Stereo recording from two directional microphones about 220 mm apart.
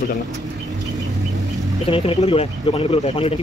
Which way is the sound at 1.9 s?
25° left (ahead or behind).